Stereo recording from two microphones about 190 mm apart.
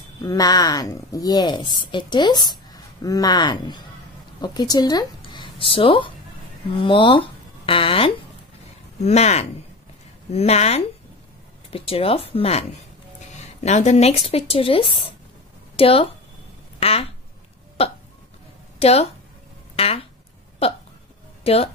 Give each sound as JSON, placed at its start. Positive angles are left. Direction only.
{"t": 0.2, "sound": "a woman's voice", "side_deg": 20}
{"t": 18.8, "sound": "speech", "side_deg": 35}
{"t": 21.5, "sound": "speech", "side_deg": 30}